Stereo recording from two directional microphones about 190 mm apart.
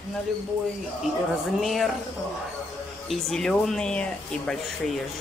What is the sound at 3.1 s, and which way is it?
Speech, centre (ahead or behind).